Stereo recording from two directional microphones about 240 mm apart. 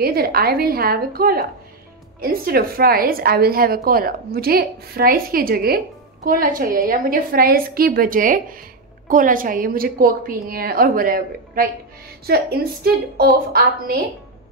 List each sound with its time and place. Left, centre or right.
0.0 s a woman's voice: right